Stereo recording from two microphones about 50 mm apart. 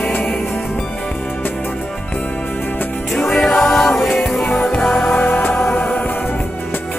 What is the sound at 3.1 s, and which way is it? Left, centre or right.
Music, centre.